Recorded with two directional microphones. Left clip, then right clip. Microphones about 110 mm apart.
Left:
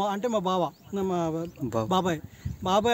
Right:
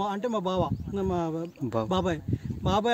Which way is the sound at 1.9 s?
40° left (ahead or behind).